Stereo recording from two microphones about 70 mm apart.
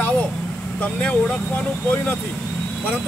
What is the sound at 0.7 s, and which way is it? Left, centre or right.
Speech, left.